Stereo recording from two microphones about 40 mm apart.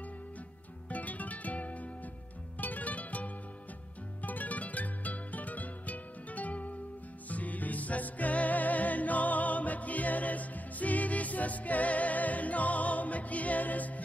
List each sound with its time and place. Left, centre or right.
0.8 s music: left